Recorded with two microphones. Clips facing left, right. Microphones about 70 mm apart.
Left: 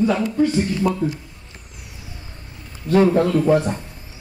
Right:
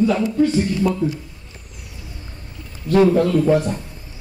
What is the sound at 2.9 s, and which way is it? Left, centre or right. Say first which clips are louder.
Speech: right 1 dB; centre.